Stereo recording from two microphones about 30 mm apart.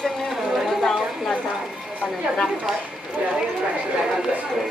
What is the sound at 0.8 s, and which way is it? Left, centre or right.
Speech, centre.